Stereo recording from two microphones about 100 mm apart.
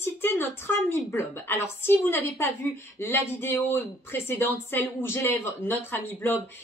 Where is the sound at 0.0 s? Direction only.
20° left (ahead or behind).